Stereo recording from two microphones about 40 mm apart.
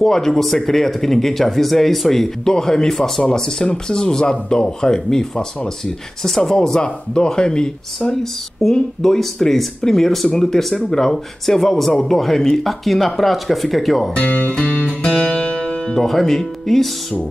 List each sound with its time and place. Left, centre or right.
0.0 s speech: centre
8.7 s speech: centre
14.1 s speech: left
14.5 s music: left
15.9 s speech: centre